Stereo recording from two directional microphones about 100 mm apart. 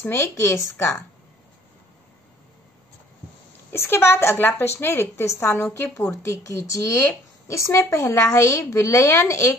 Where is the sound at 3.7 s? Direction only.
25° left (ahead or behind).